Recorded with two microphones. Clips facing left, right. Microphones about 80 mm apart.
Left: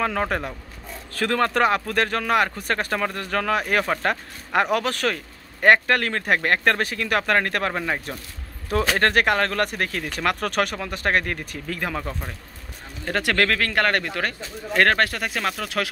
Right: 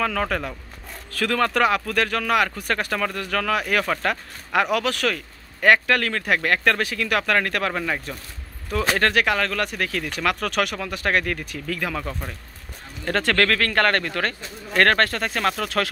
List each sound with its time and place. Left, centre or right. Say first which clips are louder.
0.0 s speech: even; left
9.0 s speech: left 1 dB; left
13.0 s speech: right 1 dB; centre